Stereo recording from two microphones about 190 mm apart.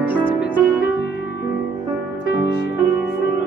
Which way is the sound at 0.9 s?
65° left (ahead or behind).